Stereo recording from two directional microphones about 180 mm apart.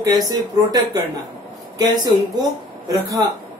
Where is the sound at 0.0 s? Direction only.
20° right (ahead or behind).